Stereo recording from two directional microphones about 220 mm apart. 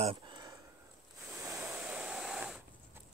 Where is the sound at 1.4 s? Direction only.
10° right (ahead or behind).